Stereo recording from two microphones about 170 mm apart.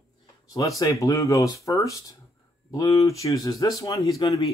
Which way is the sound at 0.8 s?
20° left (ahead or behind).